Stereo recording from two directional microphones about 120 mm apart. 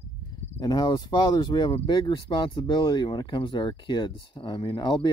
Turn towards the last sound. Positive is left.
turn(degrees=40)  # may be behind; listen again after turning